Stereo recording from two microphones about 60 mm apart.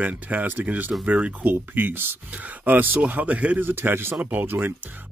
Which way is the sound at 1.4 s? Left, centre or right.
Right.